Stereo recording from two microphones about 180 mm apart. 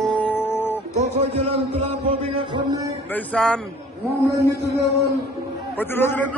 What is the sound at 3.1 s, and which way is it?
Speech, 5° left (ahead or behind).